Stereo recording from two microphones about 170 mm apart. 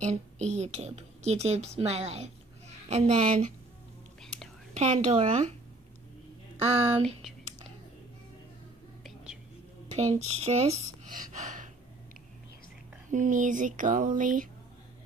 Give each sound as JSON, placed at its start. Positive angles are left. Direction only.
{"t": 0.0, "sound": "a woman's voice", "side_deg": -40}
{"t": 4.7, "sound": "a woman's voice", "side_deg": -40}
{"t": 7.0, "sound": "speech", "side_deg": 0}
{"t": 9.0, "sound": "whispering", "side_deg": -5}
{"t": 9.9, "sound": "speech", "side_deg": -40}
{"t": 13.1, "sound": "speech", "side_deg": -50}